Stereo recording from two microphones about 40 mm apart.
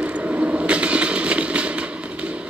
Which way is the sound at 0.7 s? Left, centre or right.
Right.